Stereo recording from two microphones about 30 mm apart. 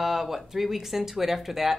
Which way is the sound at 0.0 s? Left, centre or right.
Centre.